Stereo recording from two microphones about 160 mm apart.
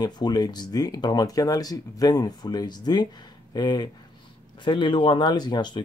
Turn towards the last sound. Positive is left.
turn(degrees=30)  # may be behind; listen again after turning